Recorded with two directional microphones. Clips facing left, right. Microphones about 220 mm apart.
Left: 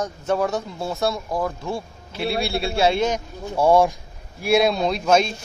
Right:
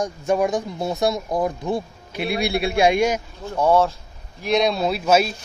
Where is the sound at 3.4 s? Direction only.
10° left (ahead or behind).